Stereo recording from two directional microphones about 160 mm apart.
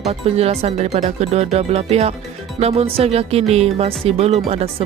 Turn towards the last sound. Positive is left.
turn(degrees=-40)  # may be behind; listen again after turning